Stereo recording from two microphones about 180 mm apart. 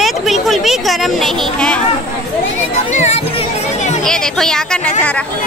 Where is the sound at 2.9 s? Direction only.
40° left (ahead or behind).